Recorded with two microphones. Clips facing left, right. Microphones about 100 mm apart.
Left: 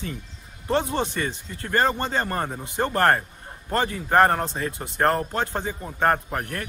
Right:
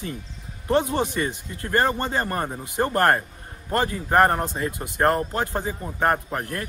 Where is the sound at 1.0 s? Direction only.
15° right (ahead or behind).